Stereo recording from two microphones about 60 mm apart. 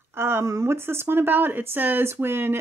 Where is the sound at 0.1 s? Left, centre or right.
Right.